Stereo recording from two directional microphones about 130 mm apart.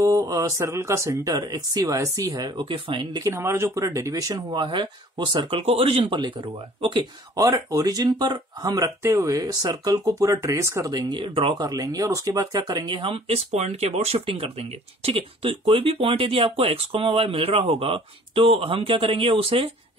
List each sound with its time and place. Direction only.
0.0 s speech: 25° right (ahead or behind)
7.4 s speech: 25° right (ahead or behind); by 19.7 s 45° right (ahead or behind)